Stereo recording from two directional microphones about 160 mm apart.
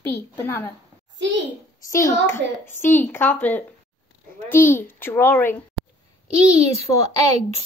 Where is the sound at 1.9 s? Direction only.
20° left (ahead or behind).